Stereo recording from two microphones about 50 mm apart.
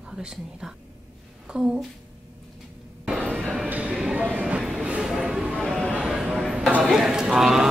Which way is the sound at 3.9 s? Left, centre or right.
Centre.